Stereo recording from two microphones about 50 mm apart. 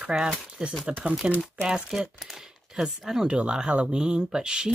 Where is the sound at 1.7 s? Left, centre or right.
Centre.